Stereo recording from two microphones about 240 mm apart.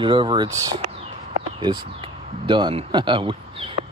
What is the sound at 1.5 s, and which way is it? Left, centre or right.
Speech, right.